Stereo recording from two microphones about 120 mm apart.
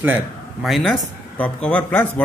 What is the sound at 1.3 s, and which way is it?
Speech, 10° left (ahead or behind).